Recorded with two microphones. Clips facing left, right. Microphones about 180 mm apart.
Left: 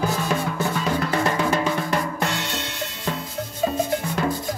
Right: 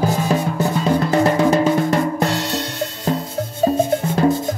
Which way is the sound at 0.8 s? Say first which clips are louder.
Right 8 dB; 35° right (ahead or behind).